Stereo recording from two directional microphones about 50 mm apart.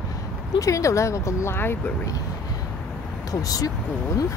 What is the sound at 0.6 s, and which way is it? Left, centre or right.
Speech, left.